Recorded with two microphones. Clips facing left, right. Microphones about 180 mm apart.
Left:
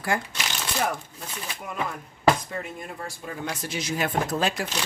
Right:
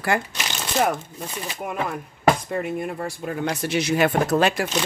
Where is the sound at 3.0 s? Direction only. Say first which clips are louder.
Right 7 dB; 65° right (ahead or behind).